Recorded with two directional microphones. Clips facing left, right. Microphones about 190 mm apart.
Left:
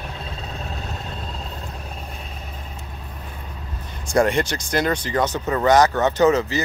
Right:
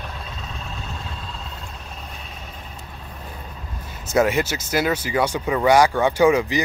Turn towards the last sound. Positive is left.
turn(degrees=-10)  # may be behind; listen again after turning